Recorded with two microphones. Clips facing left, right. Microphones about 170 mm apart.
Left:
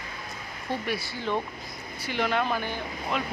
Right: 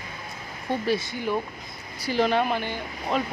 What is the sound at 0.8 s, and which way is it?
Speech, 20° right (ahead or behind).